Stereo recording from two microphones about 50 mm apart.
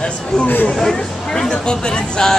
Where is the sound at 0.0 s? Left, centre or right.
Centre.